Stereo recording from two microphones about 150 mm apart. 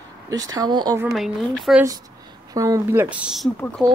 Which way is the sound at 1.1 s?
Centre (ahead or behind).